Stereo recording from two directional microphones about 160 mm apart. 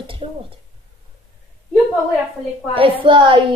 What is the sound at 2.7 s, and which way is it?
Speech, 35° right (ahead or behind).